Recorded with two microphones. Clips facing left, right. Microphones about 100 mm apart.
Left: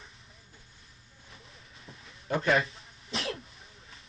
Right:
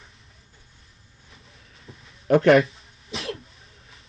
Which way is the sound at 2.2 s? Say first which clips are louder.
Right 11 dB; 80° right.